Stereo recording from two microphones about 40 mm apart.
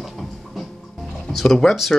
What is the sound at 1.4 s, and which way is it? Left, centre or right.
Speech, centre.